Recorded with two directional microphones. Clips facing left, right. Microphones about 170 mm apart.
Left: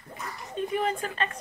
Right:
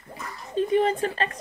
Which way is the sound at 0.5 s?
30° right (ahead or behind).